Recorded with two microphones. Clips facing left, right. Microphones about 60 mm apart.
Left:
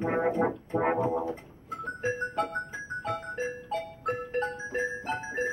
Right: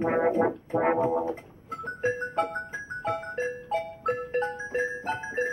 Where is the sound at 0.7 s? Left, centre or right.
Right.